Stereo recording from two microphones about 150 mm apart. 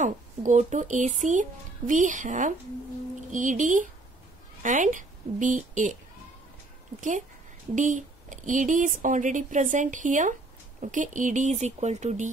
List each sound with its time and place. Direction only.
0.0 s speech: 55° right (ahead or behind)
7.0 s speech: 55° right (ahead or behind)